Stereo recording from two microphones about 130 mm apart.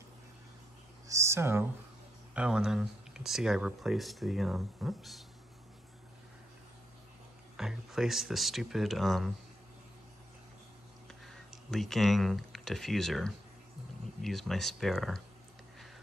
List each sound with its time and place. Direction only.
1.0 s a sound: 20° right (ahead or behind)
2.3 s speech: 5° right (ahead or behind)
7.5 s speech: 5° right (ahead or behind)
11.1 s speech: 5° left (ahead or behind)